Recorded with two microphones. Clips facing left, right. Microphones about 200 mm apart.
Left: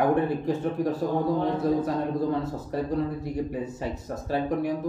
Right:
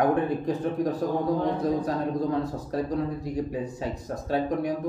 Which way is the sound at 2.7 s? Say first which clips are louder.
Left 2 dB; centre (ahead or behind).